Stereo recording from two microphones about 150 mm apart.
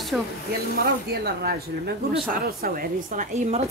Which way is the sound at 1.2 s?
90° right.